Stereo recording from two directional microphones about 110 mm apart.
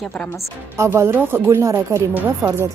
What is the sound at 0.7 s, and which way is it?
Speech, 25° right (ahead or behind).